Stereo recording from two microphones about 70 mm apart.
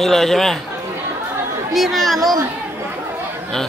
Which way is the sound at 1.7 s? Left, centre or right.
Centre.